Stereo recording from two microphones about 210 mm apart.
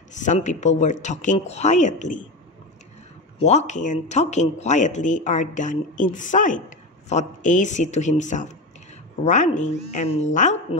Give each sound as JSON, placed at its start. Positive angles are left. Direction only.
{"t": 0.1, "sound": "speech", "side_deg": 35}
{"t": 3.3, "sound": "speech", "side_deg": 30}